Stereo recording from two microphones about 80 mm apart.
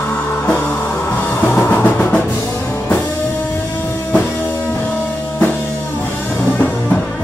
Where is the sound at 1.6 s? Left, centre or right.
Left.